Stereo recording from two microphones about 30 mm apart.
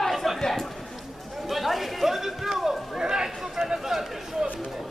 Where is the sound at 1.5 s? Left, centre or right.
Centre.